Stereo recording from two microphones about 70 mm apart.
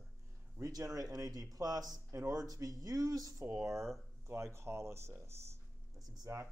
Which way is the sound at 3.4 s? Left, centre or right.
Right.